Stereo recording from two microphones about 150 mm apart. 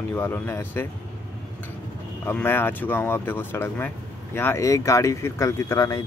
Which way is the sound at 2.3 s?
15° left (ahead or behind).